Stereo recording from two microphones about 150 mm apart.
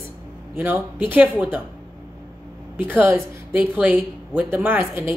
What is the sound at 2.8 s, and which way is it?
A woman's voice, 15° right (ahead or behind).